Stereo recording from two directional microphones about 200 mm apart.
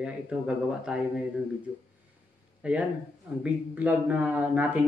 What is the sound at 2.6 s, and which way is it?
Speech, 5° right (ahead or behind).